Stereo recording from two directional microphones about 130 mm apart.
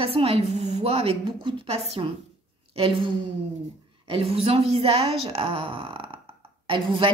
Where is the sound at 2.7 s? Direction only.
45° right (ahead or behind).